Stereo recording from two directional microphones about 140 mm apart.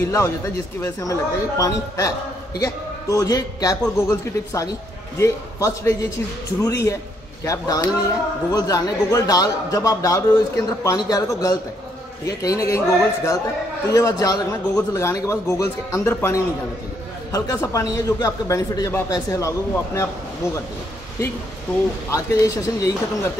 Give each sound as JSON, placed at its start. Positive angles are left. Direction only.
{"t": 0.0, "sound": "a man's voice", "side_deg": 15}
{"t": 17.6, "sound": "a man's voice", "side_deg": 25}
{"t": 22.1, "sound": "a man's voice", "side_deg": 25}